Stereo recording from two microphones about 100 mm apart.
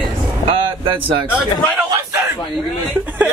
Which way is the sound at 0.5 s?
60° right (ahead or behind).